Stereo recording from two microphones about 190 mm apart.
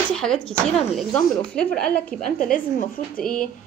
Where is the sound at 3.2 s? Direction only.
5° left (ahead or behind).